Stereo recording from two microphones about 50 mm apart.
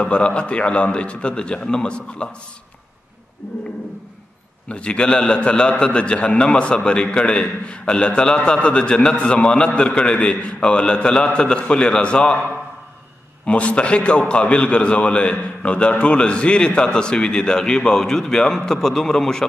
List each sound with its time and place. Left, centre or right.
0.0 s a man's voice: left
4.6 s a man's voice: left
13.5 s a man's voice: left; by 19.4 s centre